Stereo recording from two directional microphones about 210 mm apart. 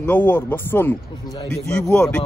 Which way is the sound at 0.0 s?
10° left (ahead or behind).